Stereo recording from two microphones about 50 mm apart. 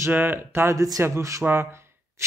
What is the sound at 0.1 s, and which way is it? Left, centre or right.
Speech, right.